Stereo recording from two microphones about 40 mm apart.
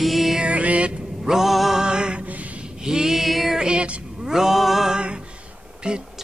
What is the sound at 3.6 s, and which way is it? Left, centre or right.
Speech, right.